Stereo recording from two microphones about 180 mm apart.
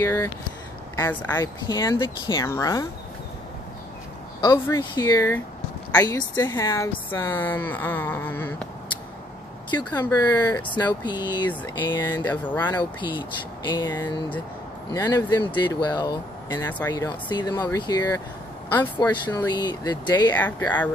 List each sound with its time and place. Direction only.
0.0 s a sound: 15° left (ahead or behind)
0.9 s speech: 20° left (ahead or behind)
4.4 s speech: 20° left (ahead or behind)
10.1 s speech: 20° left (ahead or behind)
12.3 s speech: 10° left (ahead or behind)
13.2 s speech: 25° left (ahead or behind)
16.5 s speech: 10° left (ahead or behind)
17.3 s speech: 25° left (ahead or behind)
19.2 s speech: 25° left (ahead or behind)
20.3 s speech: 10° left (ahead or behind)